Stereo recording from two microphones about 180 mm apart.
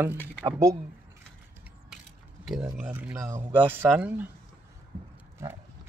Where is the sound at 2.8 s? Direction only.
10° right (ahead or behind).